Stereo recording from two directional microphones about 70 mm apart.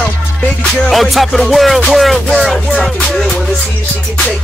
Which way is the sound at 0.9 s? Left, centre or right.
Centre.